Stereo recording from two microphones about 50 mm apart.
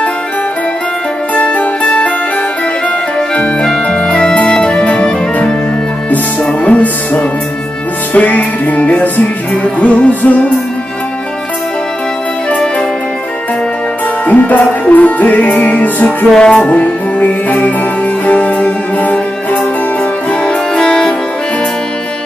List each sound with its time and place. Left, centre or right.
1.3 s music: left
3.2 s organ: left
3.8 s music: centre
14.2 s music: left
16.3 s music: centre
16.7 s music: left
20.4 s music: centre